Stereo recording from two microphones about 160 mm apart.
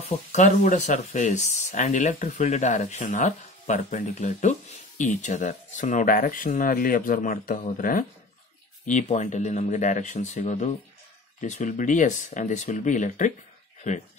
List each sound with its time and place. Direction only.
0.0 s speech: 50° left (ahead or behind)